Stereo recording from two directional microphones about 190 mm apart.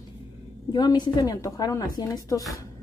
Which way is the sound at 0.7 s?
20° left (ahead or behind).